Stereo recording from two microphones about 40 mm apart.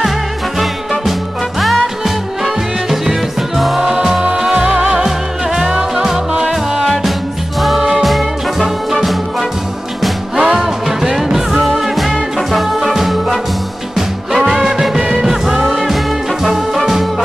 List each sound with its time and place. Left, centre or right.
2.0 s music: centre
10.3 s music: centre
15.0 s music: right
15.2 s music: centre